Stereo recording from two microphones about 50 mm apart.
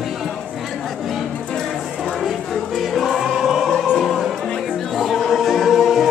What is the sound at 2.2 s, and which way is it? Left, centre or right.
Music, centre.